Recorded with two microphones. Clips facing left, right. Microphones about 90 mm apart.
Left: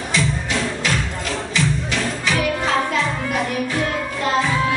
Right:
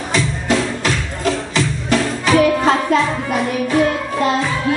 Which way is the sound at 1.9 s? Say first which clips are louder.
Right 7 dB; 40° right (ahead or behind).